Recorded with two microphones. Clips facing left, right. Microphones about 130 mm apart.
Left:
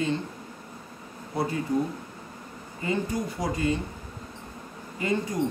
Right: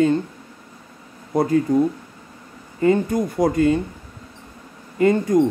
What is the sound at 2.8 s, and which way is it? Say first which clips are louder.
Speech: right 10 dB; 50° right (ahead or behind).